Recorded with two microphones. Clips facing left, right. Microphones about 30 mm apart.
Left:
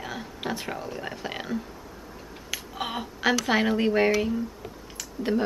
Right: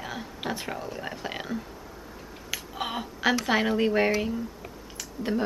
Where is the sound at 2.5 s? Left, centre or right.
Centre.